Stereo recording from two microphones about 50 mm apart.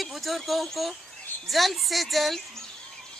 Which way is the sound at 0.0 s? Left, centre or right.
Centre.